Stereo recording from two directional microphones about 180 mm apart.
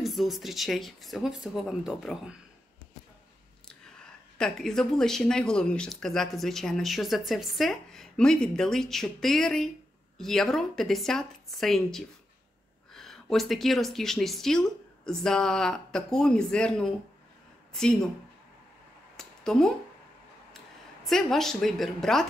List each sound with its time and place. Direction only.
0.0 s speech: centre (ahead or behind)
4.4 s speech: 5° left (ahead or behind)
19.1 s a sound: 5° left (ahead or behind)
20.5 s a woman's voice: centre (ahead or behind)